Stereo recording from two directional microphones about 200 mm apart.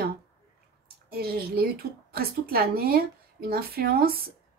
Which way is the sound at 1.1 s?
50° right (ahead or behind).